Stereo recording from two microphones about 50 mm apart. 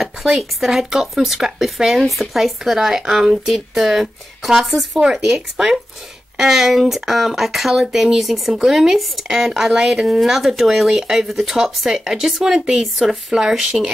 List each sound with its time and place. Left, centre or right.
0.0 s speech: centre
5.0 s speech: centre